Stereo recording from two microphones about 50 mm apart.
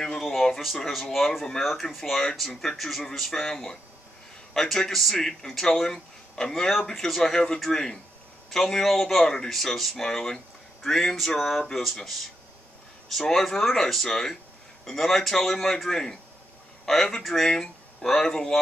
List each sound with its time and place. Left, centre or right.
0.2 s speech: centre
3.3 s speech: centre
4.6 s speech: centre